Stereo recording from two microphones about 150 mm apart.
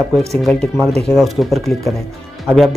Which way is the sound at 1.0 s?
Centre (ahead or behind).